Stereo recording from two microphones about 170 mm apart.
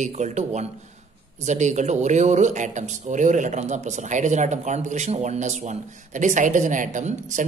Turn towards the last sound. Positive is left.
turn(degrees=-45)  # may be behind; listen again after turning